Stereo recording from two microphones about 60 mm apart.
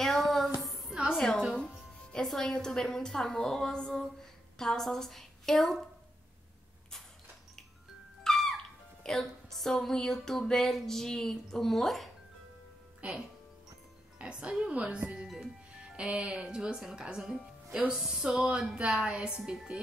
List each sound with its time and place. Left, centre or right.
0.0 s a sound: centre
1.1 s music: centre
2.1 s a woman's voice: centre
8.2 s music: centre
9.0 s a sound: centre
14.1 s a woman's voice: centre
15.2 s music: centre
16.0 s a woman's voice: centre